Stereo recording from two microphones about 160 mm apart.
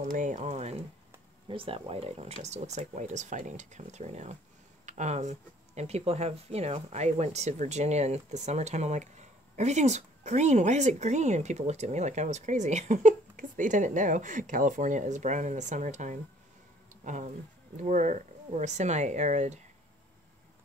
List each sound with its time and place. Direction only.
0.0 s speech: 50° right (ahead or behind)